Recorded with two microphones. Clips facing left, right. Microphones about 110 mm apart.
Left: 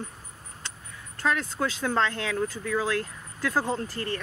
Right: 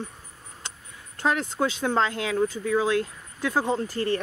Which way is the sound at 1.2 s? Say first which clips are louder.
Right 2 dB; 25° right (ahead or behind).